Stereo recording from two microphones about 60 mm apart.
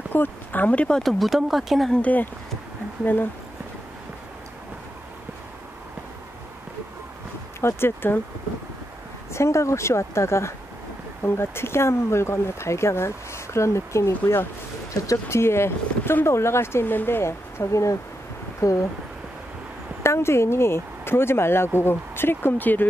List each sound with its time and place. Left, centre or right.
0.1 s speech: left
0.9 s speech: centre
2.0 s speech: left
7.6 s speech: left
9.3 s speech: left
20.0 s speech: left